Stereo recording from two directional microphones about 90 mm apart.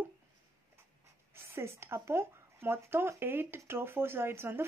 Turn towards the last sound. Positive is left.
turn(degrees=-25)  # may be behind; listen again after turning